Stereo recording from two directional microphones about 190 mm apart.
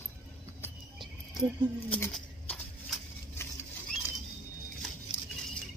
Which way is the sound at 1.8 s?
5° left (ahead or behind).